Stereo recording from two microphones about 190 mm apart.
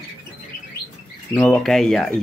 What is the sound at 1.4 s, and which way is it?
Speech, 5° left (ahead or behind).